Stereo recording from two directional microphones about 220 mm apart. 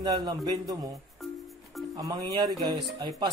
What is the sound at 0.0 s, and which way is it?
Speech, 20° right (ahead or behind).